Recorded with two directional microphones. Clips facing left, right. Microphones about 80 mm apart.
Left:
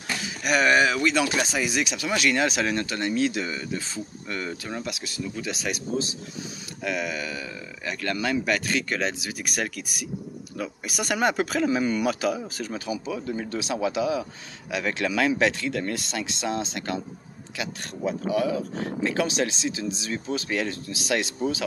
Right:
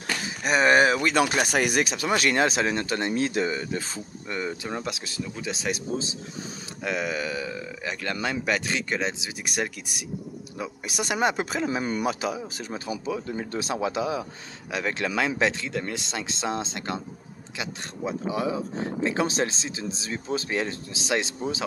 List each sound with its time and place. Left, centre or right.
0.2 s speech: right
1.4 s speech: right
4.3 s speech: centre
4.8 s speech: right
12.1 s speech: centre
12.9 s speech: right